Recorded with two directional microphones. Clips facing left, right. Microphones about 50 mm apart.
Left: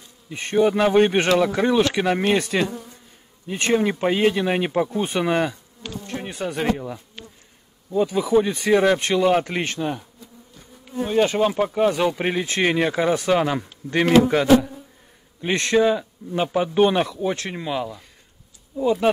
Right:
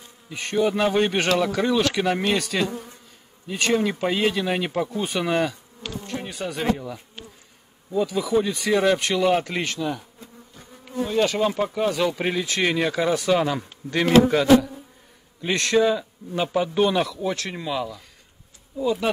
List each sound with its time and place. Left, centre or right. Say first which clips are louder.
0.3 s speech: left 3 dB; left
2.2 s insect: left 3 dB; left
3.4 s speech: left 2 dB; left
6.0 s bee: left 3 dB; left
6.6 s speech: left 1 dB; centre
8.1 s speech: left 4 dB; left
11.2 s speech: left 2 dB; left